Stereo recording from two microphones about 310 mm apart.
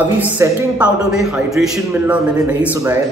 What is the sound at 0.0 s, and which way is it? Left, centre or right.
A man's voice, centre.